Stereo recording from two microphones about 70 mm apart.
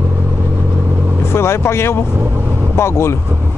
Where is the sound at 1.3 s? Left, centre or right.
Left.